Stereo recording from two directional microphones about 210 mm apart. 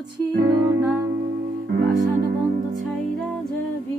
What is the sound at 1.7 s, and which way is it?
Music, 50° right (ahead or behind).